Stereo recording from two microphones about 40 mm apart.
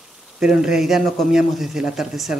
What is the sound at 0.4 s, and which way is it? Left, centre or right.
Speech, centre.